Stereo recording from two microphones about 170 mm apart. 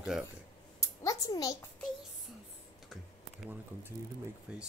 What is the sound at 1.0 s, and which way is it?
Speech, 20° left (ahead or behind).